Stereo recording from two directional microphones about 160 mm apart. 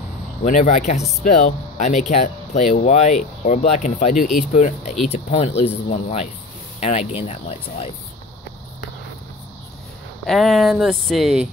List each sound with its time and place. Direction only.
0.4 s speech: 50° left (ahead or behind)
10.2 s speech: centre (ahead or behind)